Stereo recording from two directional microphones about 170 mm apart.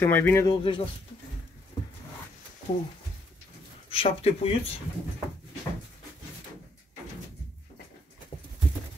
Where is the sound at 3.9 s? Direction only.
35° left (ahead or behind).